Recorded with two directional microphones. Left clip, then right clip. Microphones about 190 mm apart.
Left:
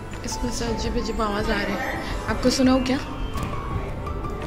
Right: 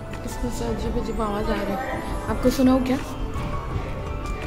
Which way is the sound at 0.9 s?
Centre (ahead or behind).